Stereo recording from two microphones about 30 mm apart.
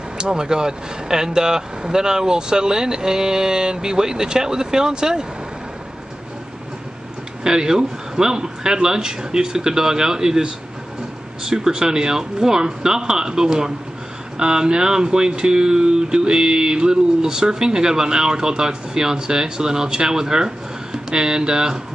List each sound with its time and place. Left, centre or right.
0.2 s speech: right
7.4 s speech: right
11.4 s speech: centre